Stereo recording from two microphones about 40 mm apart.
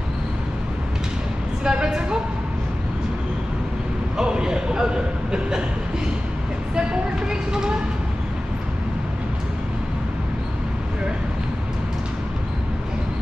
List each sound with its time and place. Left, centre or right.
1.6 s vehicle: right
4.2 s a sound: right
7.2 s vehicle: centre